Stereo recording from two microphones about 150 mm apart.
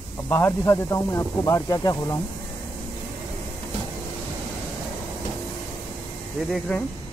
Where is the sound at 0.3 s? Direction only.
15° left (ahead or behind).